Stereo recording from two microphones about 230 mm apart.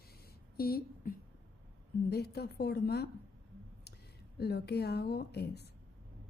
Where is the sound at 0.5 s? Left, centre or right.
Left.